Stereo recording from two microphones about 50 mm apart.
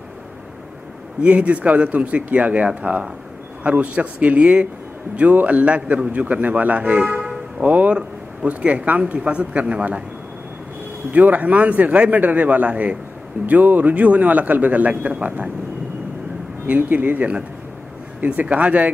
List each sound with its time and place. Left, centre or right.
1.2 s a man's voice: right
6.8 s speech: centre
7.1 s music: centre
7.6 s a man's voice: right
11.1 s a man's voice: right
16.6 s a man's voice: right